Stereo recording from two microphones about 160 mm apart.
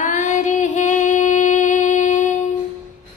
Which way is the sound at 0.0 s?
50° left (ahead or behind).